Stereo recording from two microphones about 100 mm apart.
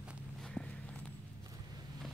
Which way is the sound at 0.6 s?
5° right (ahead or behind).